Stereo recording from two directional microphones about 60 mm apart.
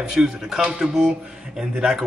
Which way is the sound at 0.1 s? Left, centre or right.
Centre.